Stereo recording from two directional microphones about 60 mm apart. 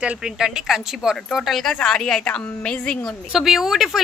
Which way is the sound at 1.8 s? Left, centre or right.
Centre.